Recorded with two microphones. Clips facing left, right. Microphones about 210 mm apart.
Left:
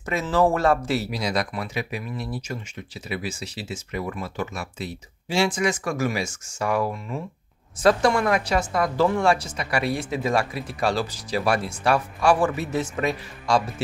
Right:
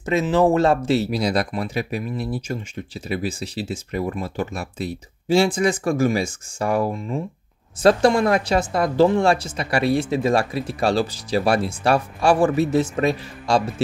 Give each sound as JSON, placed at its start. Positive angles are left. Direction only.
{"t": 0.0, "sound": "speech", "side_deg": -20}